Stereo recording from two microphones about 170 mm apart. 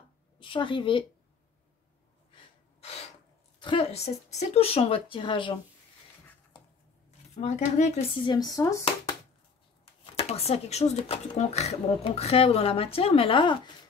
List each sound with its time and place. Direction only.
0.4 s a woman's voice: 30° left (ahead or behind)
3.5 s speech: 30° left (ahead or behind)
7.1 s speech: 40° left (ahead or behind)
8.2 s a woman's voice: 25° left (ahead or behind)
10.0 s speech: 35° left (ahead or behind)